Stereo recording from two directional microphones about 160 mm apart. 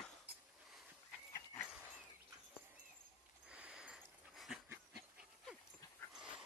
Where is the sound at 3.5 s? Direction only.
5° right (ahead or behind).